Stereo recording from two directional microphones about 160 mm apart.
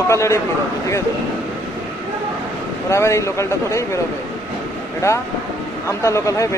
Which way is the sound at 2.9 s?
20° left (ahead or behind).